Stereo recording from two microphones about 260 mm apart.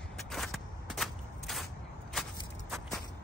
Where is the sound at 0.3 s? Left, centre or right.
Centre.